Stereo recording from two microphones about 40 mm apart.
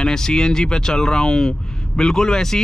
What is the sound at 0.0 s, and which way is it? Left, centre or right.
Speech, centre.